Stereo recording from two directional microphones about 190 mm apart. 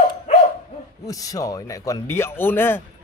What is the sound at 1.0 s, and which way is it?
Speech, 20° left (ahead or behind).